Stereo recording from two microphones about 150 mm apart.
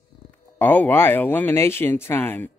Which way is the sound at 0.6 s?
10° left (ahead or behind).